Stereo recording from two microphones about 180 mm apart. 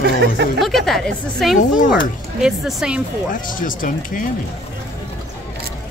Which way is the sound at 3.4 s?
50° left (ahead or behind).